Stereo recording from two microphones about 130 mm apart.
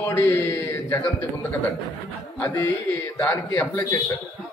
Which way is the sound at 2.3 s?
20° left (ahead or behind).